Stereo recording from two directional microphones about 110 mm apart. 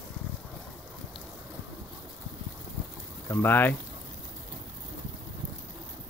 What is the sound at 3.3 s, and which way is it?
Speech, 20° left (ahead or behind).